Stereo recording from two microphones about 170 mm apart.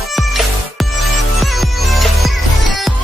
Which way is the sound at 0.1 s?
Centre (ahead or behind).